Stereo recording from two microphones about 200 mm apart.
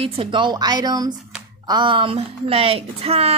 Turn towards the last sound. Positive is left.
turn(degrees=-30)  # may be behind; listen again after turning